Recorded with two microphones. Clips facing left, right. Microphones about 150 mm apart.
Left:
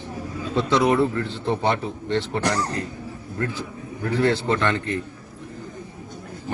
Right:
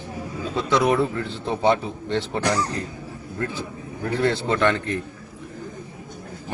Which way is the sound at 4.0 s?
15° right (ahead or behind).